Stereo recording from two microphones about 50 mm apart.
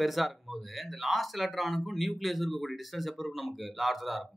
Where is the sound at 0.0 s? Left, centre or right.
Centre.